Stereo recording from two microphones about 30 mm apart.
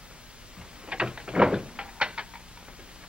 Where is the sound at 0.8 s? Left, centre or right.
Right.